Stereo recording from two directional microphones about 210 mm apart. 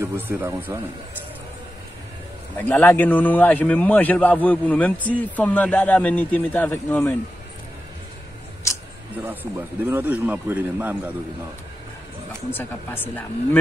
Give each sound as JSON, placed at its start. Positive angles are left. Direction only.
{"t": 0.0, "sound": "a man's voice", "side_deg": -10}
{"t": 2.5, "sound": "a man's voice", "side_deg": 10}
{"t": 9.2, "sound": "a man's voice", "side_deg": -10}
{"t": 12.3, "sound": "a man's voice", "side_deg": 10}